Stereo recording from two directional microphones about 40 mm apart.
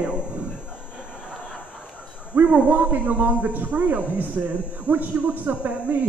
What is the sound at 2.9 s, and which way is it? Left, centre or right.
A man's voice, right.